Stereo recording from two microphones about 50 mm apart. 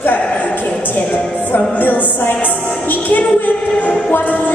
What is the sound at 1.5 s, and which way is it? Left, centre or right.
Music, left.